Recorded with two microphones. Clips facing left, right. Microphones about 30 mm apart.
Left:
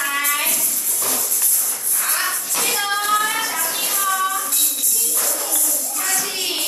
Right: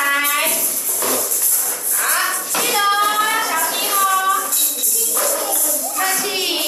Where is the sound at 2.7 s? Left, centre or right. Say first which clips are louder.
Right 7 dB; right.